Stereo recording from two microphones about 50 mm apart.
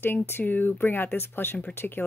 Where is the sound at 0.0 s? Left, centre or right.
Left.